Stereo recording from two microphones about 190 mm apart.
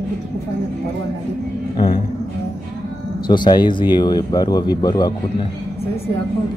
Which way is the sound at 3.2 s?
25° left (ahead or behind).